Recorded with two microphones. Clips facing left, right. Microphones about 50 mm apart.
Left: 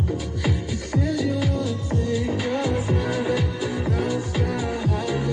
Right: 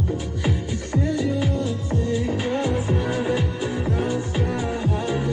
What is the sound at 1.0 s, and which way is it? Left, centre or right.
Music, right.